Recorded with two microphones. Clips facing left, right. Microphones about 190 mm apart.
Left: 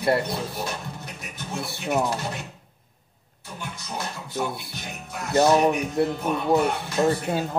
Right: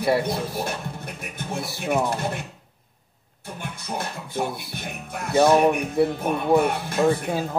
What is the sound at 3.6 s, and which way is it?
Music, 55° right (ahead or behind).